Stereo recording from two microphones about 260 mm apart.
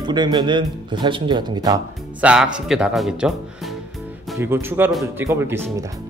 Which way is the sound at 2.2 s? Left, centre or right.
Centre.